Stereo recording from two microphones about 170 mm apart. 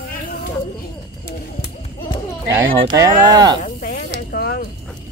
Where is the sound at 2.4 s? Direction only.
20° right (ahead or behind).